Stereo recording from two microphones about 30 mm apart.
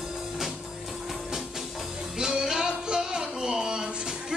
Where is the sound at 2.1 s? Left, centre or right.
Right.